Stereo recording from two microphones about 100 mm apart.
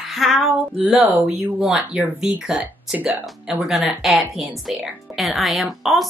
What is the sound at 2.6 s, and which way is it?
Speech, 15° right (ahead or behind).